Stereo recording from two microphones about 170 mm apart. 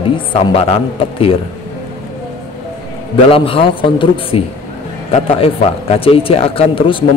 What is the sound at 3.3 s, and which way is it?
A man's voice, 35° left (ahead or behind).